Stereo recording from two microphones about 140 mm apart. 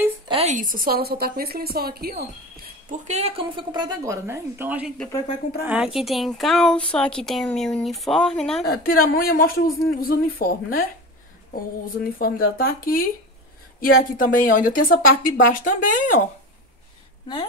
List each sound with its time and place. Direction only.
0.3 s a woman's voice: 45° right (ahead or behind)
0.6 s speech: 85° right
2.9 s a woman's voice: 50° right (ahead or behind); by 8.6 s 5° left (ahead or behind)
8.8 s a woman's voice: 90° left; by 16.2 s 65° left (ahead or behind)